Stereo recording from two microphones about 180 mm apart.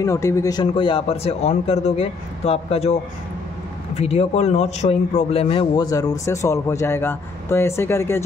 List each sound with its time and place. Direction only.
0.0 s speech: 15° left (ahead or behind)